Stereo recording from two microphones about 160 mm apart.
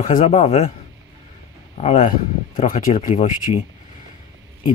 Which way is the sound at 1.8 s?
45° left (ahead or behind).